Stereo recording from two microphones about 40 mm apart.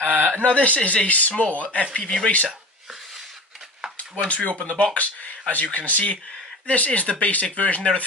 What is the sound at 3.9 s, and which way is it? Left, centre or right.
Speech, left.